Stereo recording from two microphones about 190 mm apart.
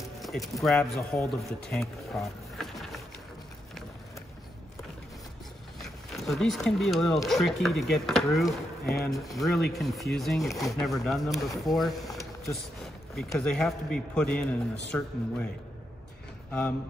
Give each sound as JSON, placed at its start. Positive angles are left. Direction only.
{"t": 0.2, "sound": "speech", "side_deg": 0}
{"t": 5.8, "sound": "a man's voice", "side_deg": 0}